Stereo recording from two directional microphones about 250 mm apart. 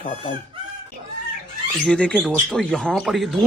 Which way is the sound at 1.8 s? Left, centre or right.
Centre.